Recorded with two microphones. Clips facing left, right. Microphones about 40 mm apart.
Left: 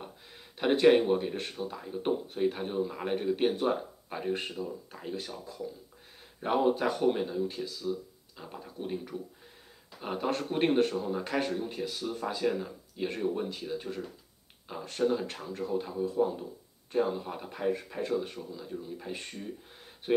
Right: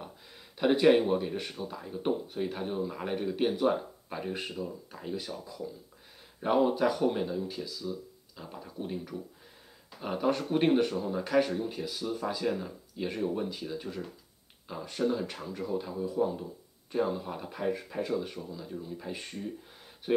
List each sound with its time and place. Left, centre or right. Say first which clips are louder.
0.6 s speech: even; centre
5.2 s speech: even; centre